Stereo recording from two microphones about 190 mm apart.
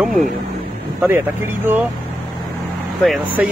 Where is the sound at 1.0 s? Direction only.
10° right (ahead or behind).